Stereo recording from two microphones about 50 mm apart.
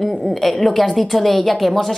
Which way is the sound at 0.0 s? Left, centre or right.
Centre.